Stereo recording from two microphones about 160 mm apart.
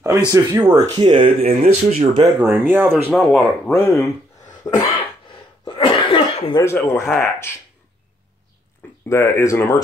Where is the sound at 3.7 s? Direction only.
15° left (ahead or behind).